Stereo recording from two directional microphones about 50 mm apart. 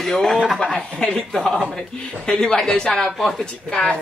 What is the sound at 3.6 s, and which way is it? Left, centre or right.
Speech, centre.